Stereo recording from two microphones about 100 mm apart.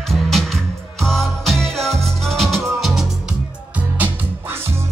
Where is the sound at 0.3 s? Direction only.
5° left (ahead or behind).